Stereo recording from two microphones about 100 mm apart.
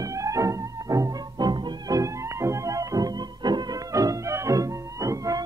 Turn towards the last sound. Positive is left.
turn(degrees=-35)  # may be behind; listen again after turning